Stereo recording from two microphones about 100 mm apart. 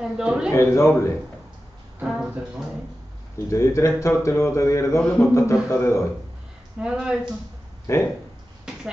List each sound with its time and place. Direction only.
0.0 s a man's voice: 10° right (ahead or behind)
0.5 s a man's voice: 30° left (ahead or behind)
2.0 s speech: 10° right (ahead or behind)
3.4 s a man's voice: 30° left (ahead or behind)
5.0 s a man's voice: 5° left (ahead or behind)
5.3 s a man's voice: 25° left (ahead or behind)
6.8 s speech: 10° right (ahead or behind)
7.8 s speech: 30° left (ahead or behind)